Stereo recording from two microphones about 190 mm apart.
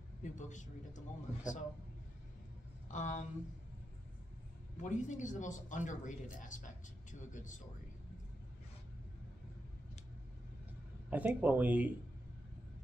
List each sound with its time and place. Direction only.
0.2 s speech: 40° left (ahead or behind)
2.9 s speech: 40° left (ahead or behind)
4.7 s speech: 40° left (ahead or behind)
11.1 s speech: 10° right (ahead or behind)